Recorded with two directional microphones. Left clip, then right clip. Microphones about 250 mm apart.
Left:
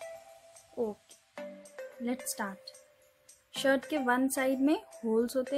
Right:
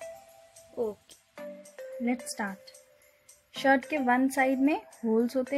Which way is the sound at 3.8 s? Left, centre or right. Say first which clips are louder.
Right 3 dB; centre.